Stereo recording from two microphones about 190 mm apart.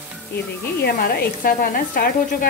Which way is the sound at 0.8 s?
55° left (ahead or behind).